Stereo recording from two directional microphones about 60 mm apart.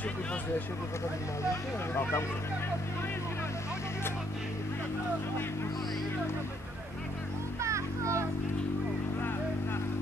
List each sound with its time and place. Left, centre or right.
2.0 s speech: left
7.6 s children playing: right